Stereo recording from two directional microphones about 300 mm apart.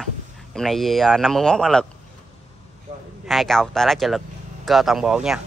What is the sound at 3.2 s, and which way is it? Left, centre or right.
Speech, centre.